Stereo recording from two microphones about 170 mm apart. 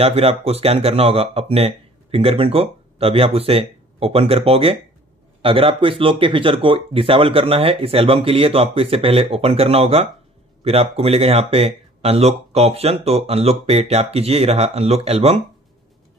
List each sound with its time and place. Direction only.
0.0 s speech: 35° right (ahead or behind)